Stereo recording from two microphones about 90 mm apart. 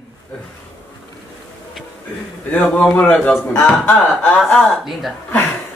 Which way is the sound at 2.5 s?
10° left (ahead or behind).